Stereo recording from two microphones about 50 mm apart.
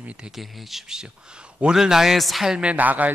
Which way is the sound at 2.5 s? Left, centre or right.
Centre.